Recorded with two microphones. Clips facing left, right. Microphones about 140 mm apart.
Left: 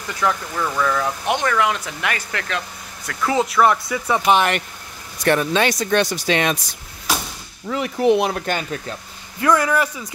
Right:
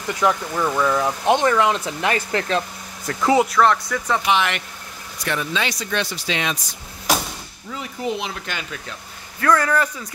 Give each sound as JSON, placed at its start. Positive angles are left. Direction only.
{"t": 0.2, "sound": "speech", "side_deg": -15}
{"t": 3.1, "sound": "speech", "side_deg": -15}
{"t": 3.4, "sound": "speech", "side_deg": 5}
{"t": 4.3, "sound": "speech", "side_deg": 45}
{"t": 7.7, "sound": "speech", "side_deg": 65}
{"t": 9.4, "sound": "speech", "side_deg": 15}